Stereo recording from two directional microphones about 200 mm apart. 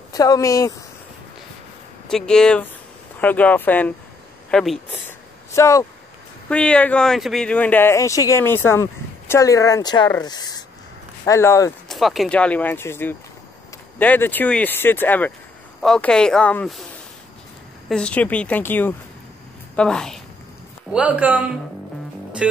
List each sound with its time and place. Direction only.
0.1 s speech: 15° left (ahead or behind)
2.0 s speech: 5° left (ahead or behind)
5.5 s a woman's voice: 15° left (ahead or behind)
11.9 s speech: centre (ahead or behind)
17.8 s a woman's voice: 5° left (ahead or behind)
20.9 s speech: 5° right (ahead or behind)